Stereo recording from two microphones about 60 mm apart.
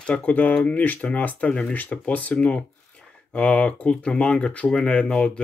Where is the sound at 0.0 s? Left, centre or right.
Centre.